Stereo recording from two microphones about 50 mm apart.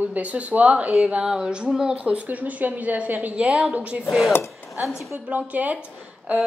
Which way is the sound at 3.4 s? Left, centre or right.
Centre.